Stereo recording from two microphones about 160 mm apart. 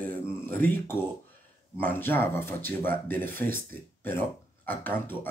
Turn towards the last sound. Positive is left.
turn(degrees=15)  # may be behind; listen again after turning